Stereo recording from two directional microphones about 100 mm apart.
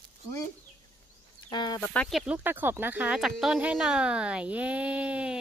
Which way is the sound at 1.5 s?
45° left (ahead or behind).